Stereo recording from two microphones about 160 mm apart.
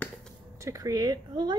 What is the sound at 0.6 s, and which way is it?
Speech, 20° right (ahead or behind).